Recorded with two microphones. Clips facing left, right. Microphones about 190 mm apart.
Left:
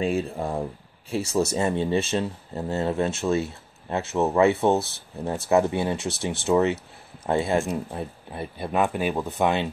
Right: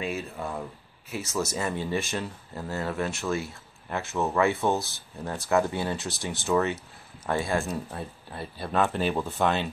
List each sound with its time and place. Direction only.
0.0 s speech: 35° left (ahead or behind); by 9.7 s 20° left (ahead or behind)